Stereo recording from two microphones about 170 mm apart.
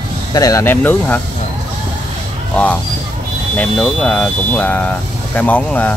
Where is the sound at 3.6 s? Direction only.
5° left (ahead or behind).